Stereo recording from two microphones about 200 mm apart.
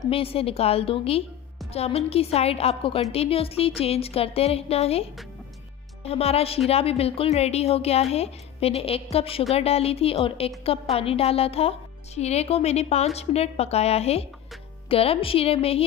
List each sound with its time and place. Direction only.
0.0 s a woman's voice: 30° left (ahead or behind)
6.0 s a woman's voice: 30° left (ahead or behind)